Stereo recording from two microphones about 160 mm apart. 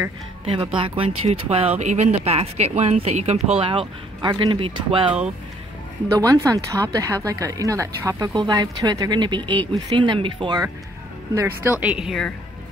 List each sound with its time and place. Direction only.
0.7 s speech: 35° right (ahead or behind)
6.1 s speech: 20° right (ahead or behind)
11.3 s a woman's voice: 15° right (ahead or behind)